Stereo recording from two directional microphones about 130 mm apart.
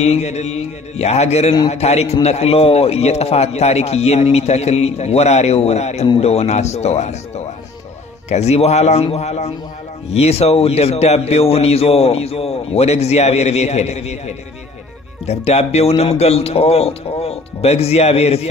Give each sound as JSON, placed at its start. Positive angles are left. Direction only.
{"t": 0.0, "sound": "speech", "side_deg": 55}